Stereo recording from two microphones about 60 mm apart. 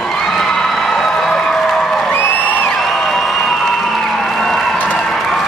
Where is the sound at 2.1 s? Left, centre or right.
Left.